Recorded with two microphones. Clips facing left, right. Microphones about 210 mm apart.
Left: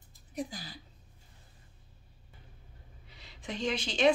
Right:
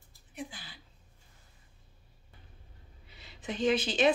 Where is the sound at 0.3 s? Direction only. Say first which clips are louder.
Left 5 dB; 40° left (ahead or behind).